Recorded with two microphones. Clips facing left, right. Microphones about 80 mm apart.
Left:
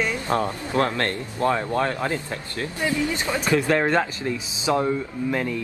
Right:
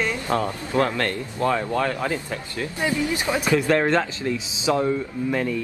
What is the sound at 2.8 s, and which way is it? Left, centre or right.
Speech, centre.